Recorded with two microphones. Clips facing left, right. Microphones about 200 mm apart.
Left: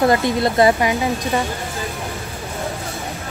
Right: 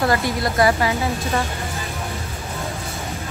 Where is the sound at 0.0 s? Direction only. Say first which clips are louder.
Left 4 dB; 20° left (ahead or behind).